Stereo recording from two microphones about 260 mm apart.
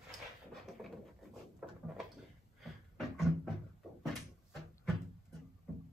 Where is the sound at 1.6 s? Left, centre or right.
Centre.